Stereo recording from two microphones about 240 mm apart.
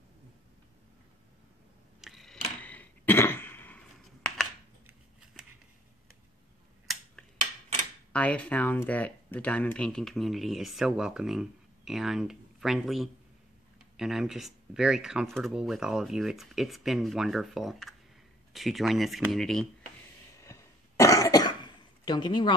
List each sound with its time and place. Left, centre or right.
2.0 s a sound: centre
8.1 s speech: centre
20.4 s cough: centre
22.0 s a woman's voice: centre